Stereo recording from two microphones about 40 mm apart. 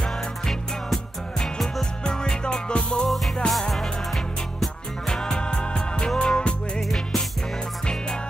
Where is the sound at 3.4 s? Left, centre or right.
Centre.